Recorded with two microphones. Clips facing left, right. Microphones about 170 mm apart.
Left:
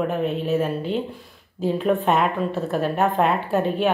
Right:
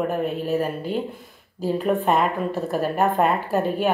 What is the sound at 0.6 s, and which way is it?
Speech, 40° right (ahead or behind).